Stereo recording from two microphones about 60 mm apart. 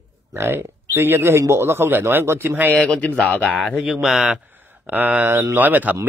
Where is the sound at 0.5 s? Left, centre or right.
Right.